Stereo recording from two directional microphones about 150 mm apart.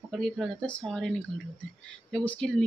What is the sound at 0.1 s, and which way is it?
A woman's voice, 5° left (ahead or behind).